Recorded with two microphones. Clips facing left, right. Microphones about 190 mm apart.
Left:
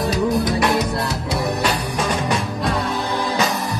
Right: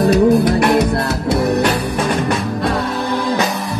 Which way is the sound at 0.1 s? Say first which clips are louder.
Right 7 dB; 55° right (ahead or behind).